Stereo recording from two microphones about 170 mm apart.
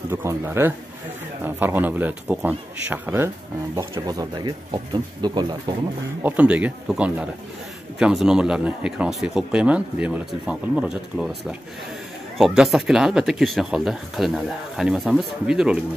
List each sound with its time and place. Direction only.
0.1 s a man's voice: 15° right (ahead or behind)
6.2 s a man's voice: 10° right (ahead or behind)